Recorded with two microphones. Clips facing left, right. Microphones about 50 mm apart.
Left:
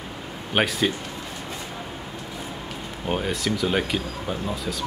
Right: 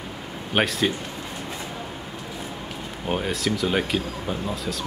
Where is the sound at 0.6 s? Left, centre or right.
Centre.